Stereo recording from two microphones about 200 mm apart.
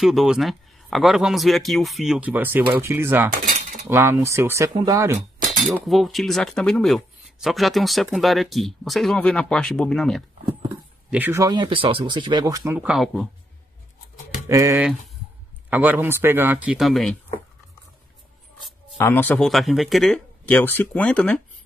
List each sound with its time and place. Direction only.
0.0 s speech: centre (ahead or behind)
3.4 s cutlery: 40° right (ahead or behind)
3.8 s speech: 10° right (ahead or behind)
5.6 s speech: centre (ahead or behind)
11.1 s speech: 10° right (ahead or behind)
14.5 s speech: 15° right (ahead or behind); by 17.2 s centre (ahead or behind)
18.9 s speech: 10° left (ahead or behind)